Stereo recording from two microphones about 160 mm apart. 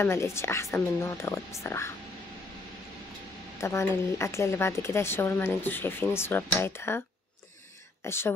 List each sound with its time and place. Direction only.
0.0 s a woman's voice: 15° left (ahead or behind)
3.6 s a woman's voice: 15° left (ahead or behind)
8.0 s speech: 15° left (ahead or behind)